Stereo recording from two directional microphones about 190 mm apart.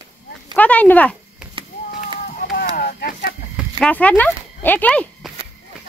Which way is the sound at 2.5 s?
50° left (ahead or behind).